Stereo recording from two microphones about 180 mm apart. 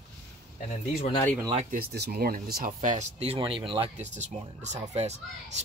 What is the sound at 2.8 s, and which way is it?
Speech, 45° right (ahead or behind).